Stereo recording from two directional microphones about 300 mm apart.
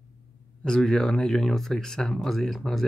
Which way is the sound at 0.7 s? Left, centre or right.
Centre.